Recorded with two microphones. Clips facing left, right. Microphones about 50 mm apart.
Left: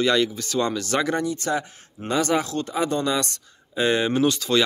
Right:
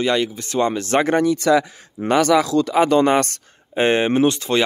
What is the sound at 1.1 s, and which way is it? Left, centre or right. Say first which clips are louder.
Speech: right 9 dB; right.